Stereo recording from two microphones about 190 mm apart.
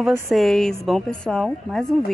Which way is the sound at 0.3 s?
Centre (ahead or behind).